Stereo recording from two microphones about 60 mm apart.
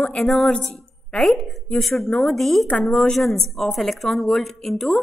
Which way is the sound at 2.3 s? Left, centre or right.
Centre.